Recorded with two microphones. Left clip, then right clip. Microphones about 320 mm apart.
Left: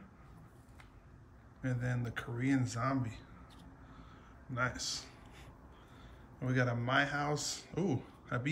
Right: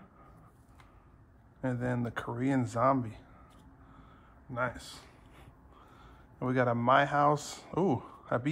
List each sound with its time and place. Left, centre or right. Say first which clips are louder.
1.6 s speech: right 7 dB; centre
4.6 s speech: right 1 dB; centre
5.9 s speech: right 8 dB; centre